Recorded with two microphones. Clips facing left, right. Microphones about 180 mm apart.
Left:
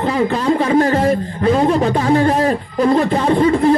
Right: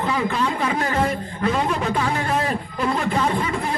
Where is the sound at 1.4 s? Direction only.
35° left (ahead or behind).